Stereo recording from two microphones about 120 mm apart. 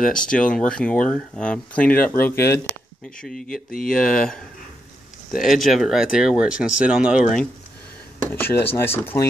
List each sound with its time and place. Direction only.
0.0 s speech: 5° left (ahead or behind)
3.2 s speech: 5° left (ahead or behind)
8.3 s speech: 20° left (ahead or behind)